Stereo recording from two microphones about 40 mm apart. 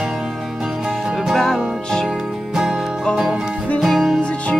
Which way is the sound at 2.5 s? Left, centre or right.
Centre.